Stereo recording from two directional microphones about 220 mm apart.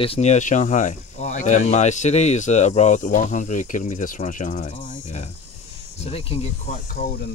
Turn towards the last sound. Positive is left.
turn(degrees=35)  # may be behind; listen again after turning